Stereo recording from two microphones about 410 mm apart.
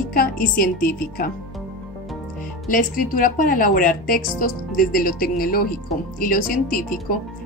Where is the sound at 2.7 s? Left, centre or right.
Centre.